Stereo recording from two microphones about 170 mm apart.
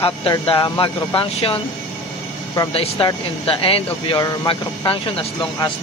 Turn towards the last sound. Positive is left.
turn(degrees=30)  # may be behind; listen again after turning